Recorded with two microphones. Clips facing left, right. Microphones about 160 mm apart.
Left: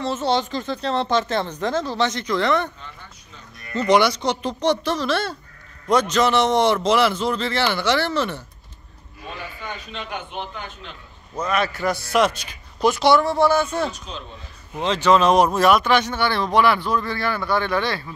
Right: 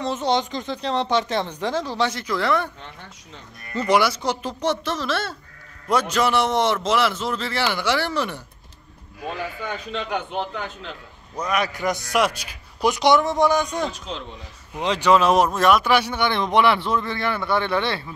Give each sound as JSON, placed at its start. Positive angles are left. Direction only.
{"t": 0.0, "sound": "a man's voice", "side_deg": -15}
{"t": 3.7, "sound": "a man's voice", "side_deg": -5}
{"t": 11.3, "sound": "a man's voice", "side_deg": -15}